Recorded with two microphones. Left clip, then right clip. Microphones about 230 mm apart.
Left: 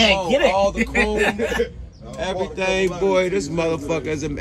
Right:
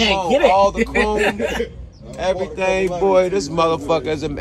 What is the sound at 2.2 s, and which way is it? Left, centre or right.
Speech, centre.